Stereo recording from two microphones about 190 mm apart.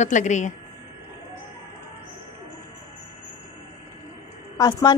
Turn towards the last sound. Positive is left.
turn(degrees=20)  # may be behind; listen again after turning